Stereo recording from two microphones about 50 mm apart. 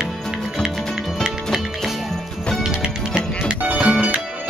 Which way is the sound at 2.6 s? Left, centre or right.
Centre.